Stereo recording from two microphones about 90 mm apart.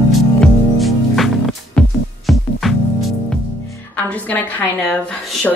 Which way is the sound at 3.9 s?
20° left (ahead or behind).